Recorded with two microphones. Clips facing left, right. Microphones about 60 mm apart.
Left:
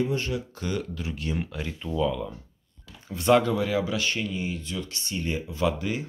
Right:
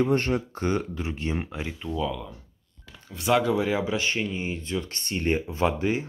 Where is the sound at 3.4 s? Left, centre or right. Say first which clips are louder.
Right 1 dB; centre.